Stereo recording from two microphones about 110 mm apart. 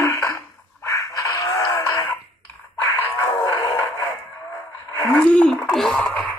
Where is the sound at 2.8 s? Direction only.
25° left (ahead or behind).